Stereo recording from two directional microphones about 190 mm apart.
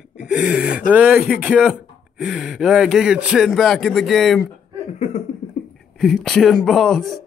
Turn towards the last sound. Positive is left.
turn(degrees=0)  # may be behind; listen again after turning